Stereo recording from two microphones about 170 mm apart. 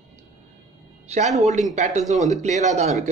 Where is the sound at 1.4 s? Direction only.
45° right (ahead or behind).